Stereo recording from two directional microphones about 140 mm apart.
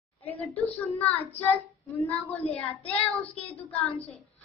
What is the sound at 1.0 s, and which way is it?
Speech, 10° left (ahead or behind).